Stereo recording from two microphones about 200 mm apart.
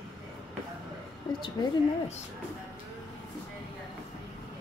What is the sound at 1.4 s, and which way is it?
Speech, 30° left (ahead or behind).